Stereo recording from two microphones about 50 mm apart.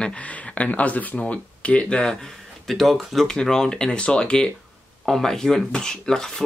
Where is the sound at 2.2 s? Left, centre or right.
Centre.